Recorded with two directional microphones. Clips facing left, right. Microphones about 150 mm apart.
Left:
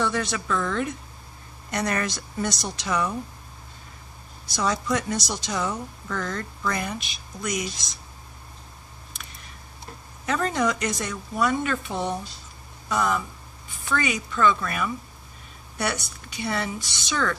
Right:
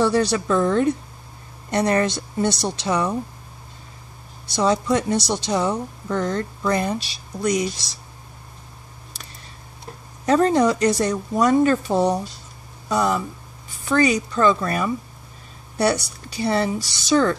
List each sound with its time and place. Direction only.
0.0 s a woman's voice: 35° right (ahead or behind)
4.6 s a woman's voice: 30° right (ahead or behind)
10.2 s speech: 35° right (ahead or behind)